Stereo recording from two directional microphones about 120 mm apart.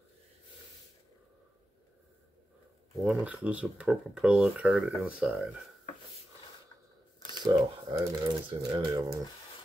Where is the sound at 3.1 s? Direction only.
10° right (ahead or behind).